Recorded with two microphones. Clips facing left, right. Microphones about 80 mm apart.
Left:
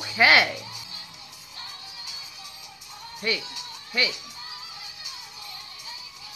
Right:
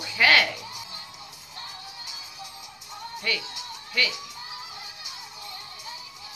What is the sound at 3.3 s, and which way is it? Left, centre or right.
Speech, centre.